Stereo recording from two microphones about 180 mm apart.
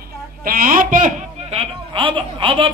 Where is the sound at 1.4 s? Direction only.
35° right (ahead or behind).